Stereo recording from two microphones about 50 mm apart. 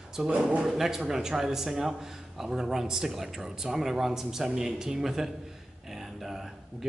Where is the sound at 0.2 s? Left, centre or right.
Centre.